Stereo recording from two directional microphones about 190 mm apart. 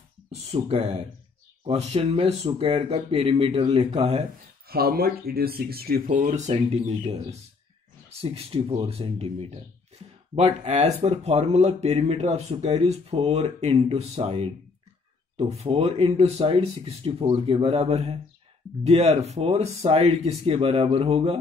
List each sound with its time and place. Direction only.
0.3 s speech: 35° right (ahead or behind)
4.6 s speech: 55° right (ahead or behind); by 21.4 s 30° right (ahead or behind)